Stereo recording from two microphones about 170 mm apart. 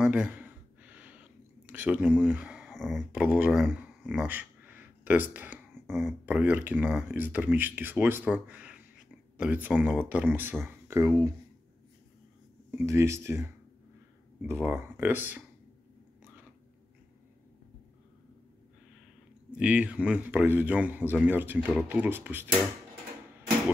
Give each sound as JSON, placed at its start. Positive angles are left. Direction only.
{"t": 0.0, "sound": "a sound", "side_deg": -10}
{"t": 6.0, "sound": "speech", "side_deg": -10}
{"t": 12.8, "sound": "speech", "side_deg": -15}
{"t": 19.5, "sound": "speech", "side_deg": -5}